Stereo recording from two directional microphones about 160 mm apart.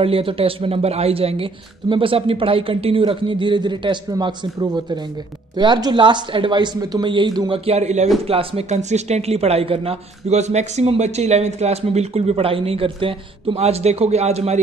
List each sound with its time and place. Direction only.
0.0 s speech: 35° right (ahead or behind)